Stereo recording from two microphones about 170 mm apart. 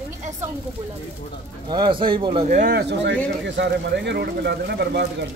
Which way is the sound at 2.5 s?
50° right (ahead or behind).